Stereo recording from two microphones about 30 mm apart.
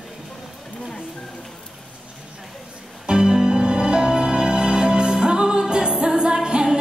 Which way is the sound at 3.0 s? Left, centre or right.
Right.